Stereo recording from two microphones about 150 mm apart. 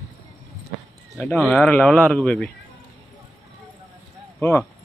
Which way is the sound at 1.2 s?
Centre (ahead or behind).